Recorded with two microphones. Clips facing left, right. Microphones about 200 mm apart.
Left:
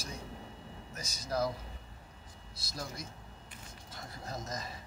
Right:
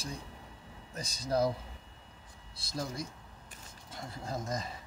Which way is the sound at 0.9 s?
30° right (ahead or behind).